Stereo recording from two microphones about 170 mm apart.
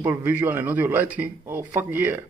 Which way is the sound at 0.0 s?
10° right (ahead or behind).